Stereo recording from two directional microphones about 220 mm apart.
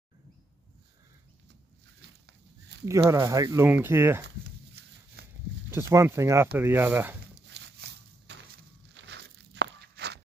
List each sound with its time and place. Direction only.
2.0 s goat: 50° right (ahead or behind)
2.8 s speech: 15° right (ahead or behind)
5.2 s a sound: 45° right (ahead or behind)
5.7 s speech: 10° right (ahead or behind)
7.3 s a sound: 55° right (ahead or behind)
8.9 s walk: 50° right (ahead or behind)